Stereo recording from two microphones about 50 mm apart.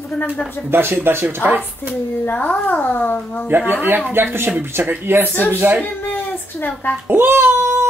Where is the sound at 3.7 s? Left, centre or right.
Right.